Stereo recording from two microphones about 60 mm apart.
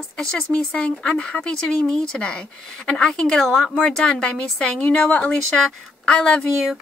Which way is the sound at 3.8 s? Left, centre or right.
Centre.